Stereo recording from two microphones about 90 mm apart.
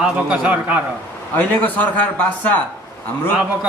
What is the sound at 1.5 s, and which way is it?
Speech, 20° left (ahead or behind).